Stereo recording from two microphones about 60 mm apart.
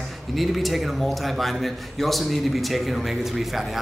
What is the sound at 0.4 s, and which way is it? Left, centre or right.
A man's voice, centre.